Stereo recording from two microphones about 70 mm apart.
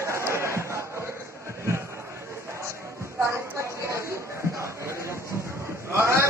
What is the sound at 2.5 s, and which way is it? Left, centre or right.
Music, right.